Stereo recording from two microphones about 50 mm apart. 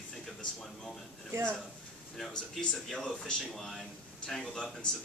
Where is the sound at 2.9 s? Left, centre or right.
Centre.